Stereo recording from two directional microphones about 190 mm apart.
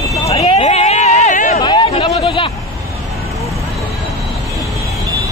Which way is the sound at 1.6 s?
25° left (ahead or behind).